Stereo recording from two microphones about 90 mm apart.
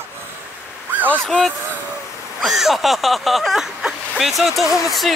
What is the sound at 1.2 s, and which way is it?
Speech, 5° left (ahead or behind).